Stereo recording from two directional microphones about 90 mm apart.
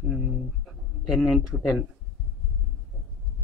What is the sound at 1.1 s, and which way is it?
Speech, centre (ahead or behind).